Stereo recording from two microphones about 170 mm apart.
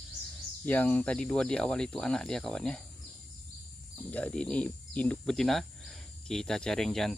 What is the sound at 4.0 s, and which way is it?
Speech, 10° left (ahead or behind).